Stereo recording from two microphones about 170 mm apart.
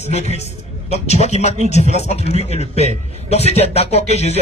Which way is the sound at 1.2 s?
40° left (ahead or behind).